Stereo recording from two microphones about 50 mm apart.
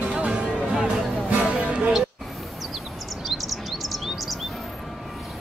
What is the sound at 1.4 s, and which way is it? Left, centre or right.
Music, right.